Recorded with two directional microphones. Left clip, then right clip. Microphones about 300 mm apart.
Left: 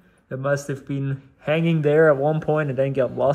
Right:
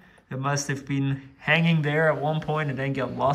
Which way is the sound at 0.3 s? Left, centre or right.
Centre.